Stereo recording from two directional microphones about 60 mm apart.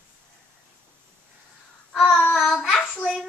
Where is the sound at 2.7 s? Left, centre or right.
Left.